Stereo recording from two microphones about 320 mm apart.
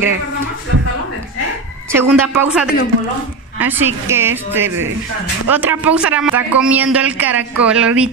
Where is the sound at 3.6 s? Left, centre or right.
Centre.